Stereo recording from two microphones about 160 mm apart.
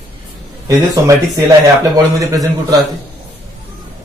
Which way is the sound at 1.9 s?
20° right (ahead or behind).